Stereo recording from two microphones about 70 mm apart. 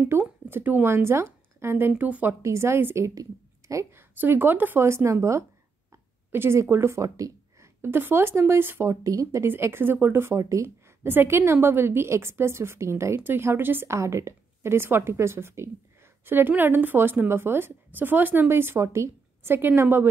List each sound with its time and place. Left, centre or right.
0.2 s a woman's voice: right
2.4 s a woman's voice: right
3.2 s a sound: right
3.9 s a woman's voice: right
7.2 s a sound: right
7.8 s a woman's voice: right
8.8 s speech: right
9.5 s a woman's voice: right
10.4 s speech: right
11.1 s a woman's voice: right
13.9 s a woman's voice: right